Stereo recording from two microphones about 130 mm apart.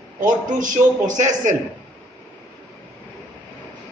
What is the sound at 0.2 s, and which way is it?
A man's voice, 90° right.